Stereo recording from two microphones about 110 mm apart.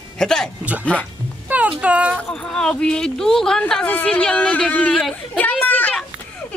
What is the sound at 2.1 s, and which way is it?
Speech, 5° left (ahead or behind).